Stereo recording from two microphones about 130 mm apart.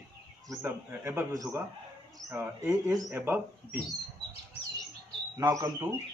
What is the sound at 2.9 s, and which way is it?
Speech, 25° right (ahead or behind).